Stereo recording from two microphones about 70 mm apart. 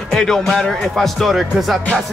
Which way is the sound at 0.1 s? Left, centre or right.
Centre.